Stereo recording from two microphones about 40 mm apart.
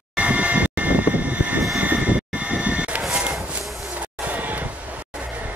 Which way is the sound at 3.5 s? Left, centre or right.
Right.